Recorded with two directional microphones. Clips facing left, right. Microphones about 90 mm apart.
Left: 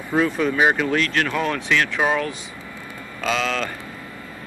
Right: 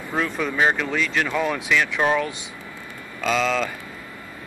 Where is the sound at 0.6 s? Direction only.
15° left (ahead or behind).